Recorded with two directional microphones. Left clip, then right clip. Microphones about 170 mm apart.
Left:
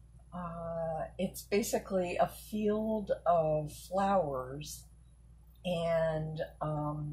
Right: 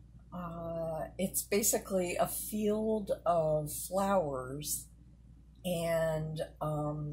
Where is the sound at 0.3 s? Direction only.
20° right (ahead or behind).